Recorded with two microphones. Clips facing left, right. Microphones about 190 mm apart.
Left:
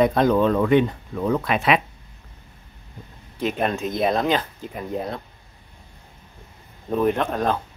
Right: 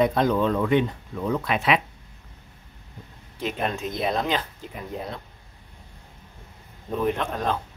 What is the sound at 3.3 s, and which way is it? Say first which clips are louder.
Speech: left 4 dB; 50° left (ahead or behind).